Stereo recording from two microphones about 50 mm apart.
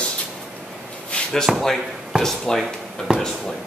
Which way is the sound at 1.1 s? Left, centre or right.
Left.